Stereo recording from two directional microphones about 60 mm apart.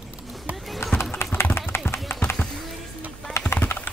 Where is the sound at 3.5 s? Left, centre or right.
Left.